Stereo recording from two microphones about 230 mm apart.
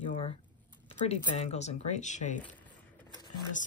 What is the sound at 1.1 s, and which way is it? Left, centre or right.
Speech, left.